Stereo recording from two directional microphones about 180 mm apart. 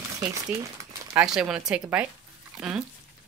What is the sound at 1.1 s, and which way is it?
Speech, 5° right (ahead or behind).